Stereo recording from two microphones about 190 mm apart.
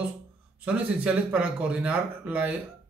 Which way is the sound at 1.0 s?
5° right (ahead or behind).